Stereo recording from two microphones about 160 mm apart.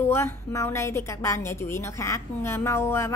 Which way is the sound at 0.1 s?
20° left (ahead or behind).